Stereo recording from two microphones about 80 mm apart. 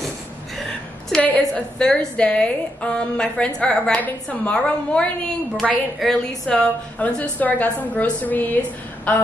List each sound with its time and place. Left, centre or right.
1.5 s a woman's voice: centre
6.5 s a woman's voice: centre